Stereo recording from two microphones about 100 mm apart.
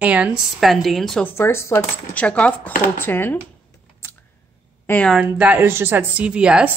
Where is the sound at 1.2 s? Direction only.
25° left (ahead or behind).